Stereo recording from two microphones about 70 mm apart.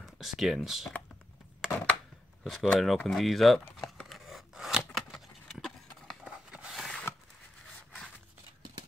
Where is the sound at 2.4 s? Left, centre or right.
Centre.